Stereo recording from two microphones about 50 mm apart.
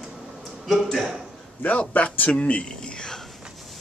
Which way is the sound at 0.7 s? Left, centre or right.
Centre.